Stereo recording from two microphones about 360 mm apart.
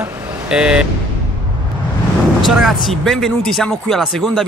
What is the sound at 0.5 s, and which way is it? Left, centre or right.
Speech, centre.